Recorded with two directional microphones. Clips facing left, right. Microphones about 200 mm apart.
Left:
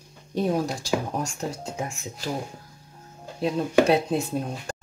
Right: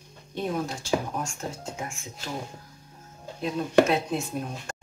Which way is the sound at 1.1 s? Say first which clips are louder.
Left 4 dB; 35° left (ahead or behind).